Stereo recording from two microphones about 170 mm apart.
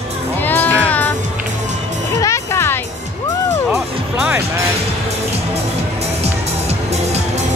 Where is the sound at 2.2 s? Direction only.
15° left (ahead or behind).